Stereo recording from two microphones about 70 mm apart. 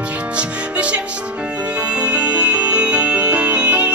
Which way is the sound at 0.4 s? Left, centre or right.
Centre.